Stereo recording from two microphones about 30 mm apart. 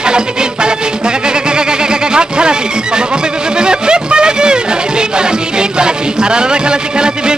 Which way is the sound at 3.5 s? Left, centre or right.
Right.